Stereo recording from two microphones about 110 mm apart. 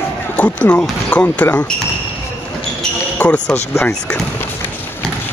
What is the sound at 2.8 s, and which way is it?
Basketball bounce, 10° left (ahead or behind).